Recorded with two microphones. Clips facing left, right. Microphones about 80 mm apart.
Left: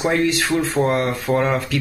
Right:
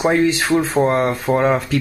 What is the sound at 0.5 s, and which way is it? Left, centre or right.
Speech, centre.